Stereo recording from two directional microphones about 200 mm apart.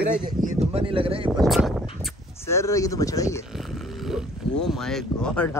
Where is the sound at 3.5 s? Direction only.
Centre (ahead or behind).